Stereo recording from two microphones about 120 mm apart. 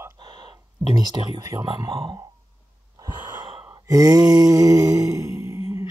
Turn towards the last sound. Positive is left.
turn(degrees=55)  # may be behind; listen again after turning